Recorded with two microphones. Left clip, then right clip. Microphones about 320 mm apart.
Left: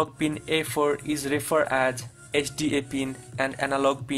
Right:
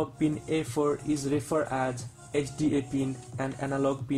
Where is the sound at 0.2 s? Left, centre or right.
Left.